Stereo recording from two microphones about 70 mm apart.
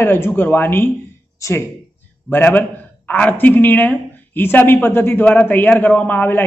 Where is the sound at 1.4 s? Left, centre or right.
Left.